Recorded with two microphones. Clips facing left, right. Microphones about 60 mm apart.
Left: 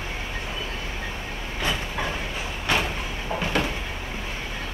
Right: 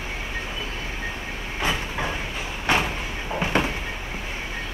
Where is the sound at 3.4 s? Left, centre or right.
Centre.